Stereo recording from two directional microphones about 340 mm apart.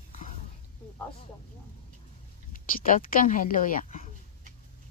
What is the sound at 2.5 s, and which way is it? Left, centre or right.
Speech, left.